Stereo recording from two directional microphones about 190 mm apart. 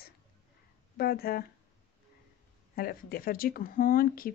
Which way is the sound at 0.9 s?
55° left (ahead or behind).